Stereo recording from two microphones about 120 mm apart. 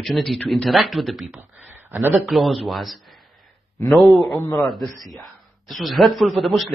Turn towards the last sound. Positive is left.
turn(degrees=0)  # may be behind; listen again after turning